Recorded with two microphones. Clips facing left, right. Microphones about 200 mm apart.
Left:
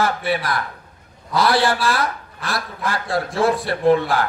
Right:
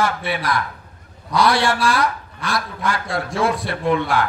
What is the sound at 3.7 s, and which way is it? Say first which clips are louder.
Speech: left 4 dB; 30° left (ahead or behind).